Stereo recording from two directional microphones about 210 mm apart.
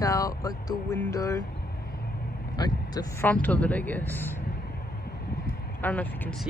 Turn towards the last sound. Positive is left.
turn(degrees=5)  # may be behind; listen again after turning